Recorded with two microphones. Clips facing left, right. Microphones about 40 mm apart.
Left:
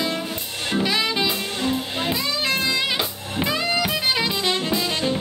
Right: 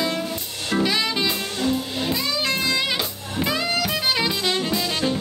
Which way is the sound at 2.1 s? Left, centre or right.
Centre.